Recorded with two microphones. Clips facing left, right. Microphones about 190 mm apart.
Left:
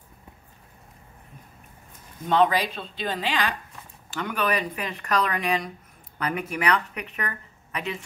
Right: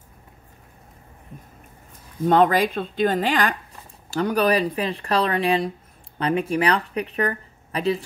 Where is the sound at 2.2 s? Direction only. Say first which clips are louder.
Right 4 dB; 45° right (ahead or behind).